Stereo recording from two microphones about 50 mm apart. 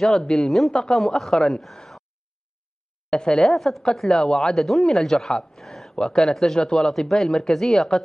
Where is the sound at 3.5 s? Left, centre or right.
Centre.